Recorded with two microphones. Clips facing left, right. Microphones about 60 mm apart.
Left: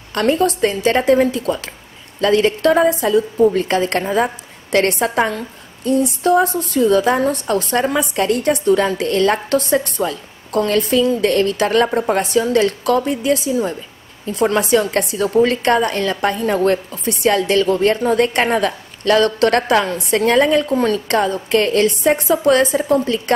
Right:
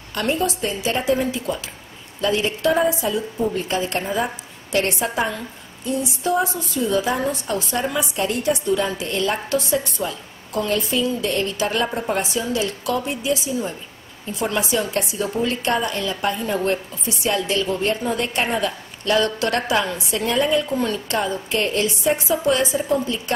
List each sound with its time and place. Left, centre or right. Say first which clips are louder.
0.1 s a woman's voice: left 6 dB; left